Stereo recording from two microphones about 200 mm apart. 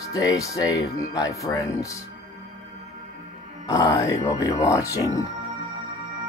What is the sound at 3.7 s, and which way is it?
Speech, 15° left (ahead or behind).